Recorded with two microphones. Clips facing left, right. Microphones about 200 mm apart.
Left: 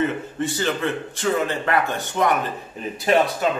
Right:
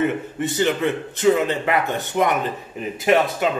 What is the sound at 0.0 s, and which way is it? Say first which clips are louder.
Speech: right 1 dB; 20° right (ahead or behind).